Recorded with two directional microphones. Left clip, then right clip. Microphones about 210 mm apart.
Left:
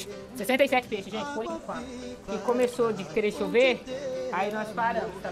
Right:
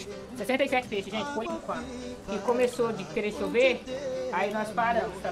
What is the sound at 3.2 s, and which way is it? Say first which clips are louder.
Speech: left 2 dB; 45° left (ahead or behind).